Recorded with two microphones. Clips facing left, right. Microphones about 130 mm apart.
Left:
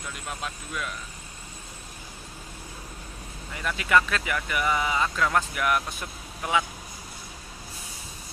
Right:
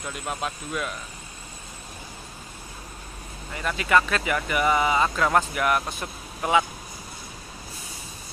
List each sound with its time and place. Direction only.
0.3 s speech: 45° right (ahead or behind)
3.7 s speech: 5° right (ahead or behind)
4.5 s speech: 45° right (ahead or behind)